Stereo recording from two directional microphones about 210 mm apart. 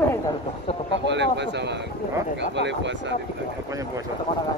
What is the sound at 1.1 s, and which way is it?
Speech, 55° right (ahead or behind).